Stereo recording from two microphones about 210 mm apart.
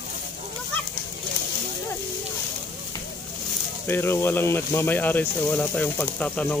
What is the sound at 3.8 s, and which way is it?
Speech, 10° left (ahead or behind).